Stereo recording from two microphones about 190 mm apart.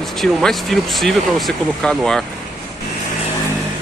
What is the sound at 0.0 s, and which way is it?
Speech, centre (ahead or behind).